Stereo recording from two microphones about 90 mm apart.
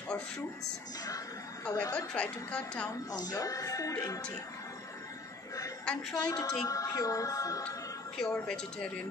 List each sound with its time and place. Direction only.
1.7 s speech: 35° left (ahead or behind)
2.0 s a woman's voice: 15° left (ahead or behind)
3.1 s speech: 45° left (ahead or behind)
6.1 s a woman's voice: 45° left (ahead or behind)
8.2 s a woman's voice: 10° left (ahead or behind)